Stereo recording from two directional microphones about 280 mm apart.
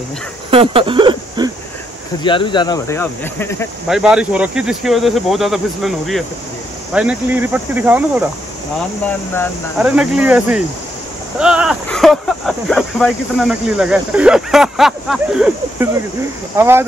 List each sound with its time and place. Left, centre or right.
0.5 s a sound: centre
2.2 s speech: centre
3.9 s speech: centre
9.0 s speech: centre
9.8 s speech: centre